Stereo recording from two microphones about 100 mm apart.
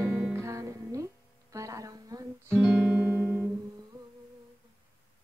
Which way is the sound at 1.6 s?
35° right (ahead or behind).